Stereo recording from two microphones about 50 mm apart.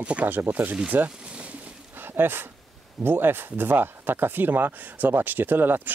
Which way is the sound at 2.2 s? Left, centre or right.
Right.